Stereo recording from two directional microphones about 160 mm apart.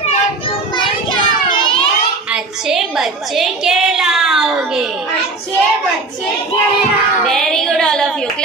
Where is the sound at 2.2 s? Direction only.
5° right (ahead or behind).